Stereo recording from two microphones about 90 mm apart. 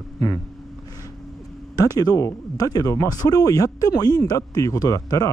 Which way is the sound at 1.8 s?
45° left (ahead or behind).